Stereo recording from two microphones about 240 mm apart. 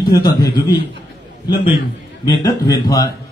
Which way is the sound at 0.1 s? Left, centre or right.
Centre.